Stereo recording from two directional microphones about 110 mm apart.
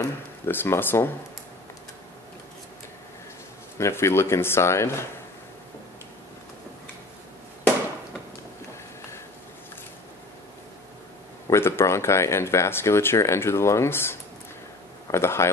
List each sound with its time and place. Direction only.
0.5 s speech: 20° left (ahead or behind)
3.7 s speech: 25° left (ahead or behind)
11.5 s speech: 25° left (ahead or behind)